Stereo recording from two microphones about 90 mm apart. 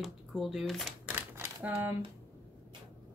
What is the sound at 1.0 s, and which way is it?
Typewriter, 20° right (ahead or behind).